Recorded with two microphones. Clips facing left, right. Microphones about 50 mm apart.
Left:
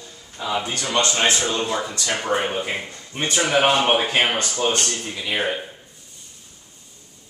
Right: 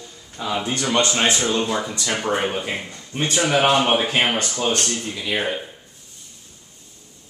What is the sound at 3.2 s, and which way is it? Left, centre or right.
Speech, centre.